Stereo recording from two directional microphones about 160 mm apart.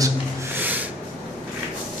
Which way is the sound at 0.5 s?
10° right (ahead or behind).